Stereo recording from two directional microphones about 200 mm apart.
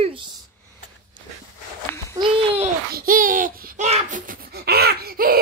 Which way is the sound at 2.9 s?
45° right (ahead or behind).